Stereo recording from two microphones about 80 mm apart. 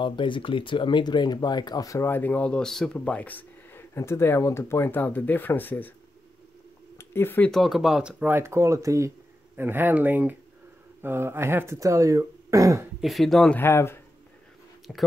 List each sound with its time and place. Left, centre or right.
0.0 s speech: left
2.0 s speech: left
7.0 s speech: left
7.5 s speech: centre
8.2 s speech: right
9.6 s speech: right
13.0 s speech: centre
13.6 s speech: left
14.9 s speech: centre